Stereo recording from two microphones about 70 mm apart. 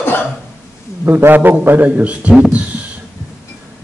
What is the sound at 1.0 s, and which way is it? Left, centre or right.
Speech, right.